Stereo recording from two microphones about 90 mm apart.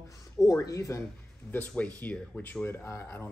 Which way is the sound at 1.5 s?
15° left (ahead or behind).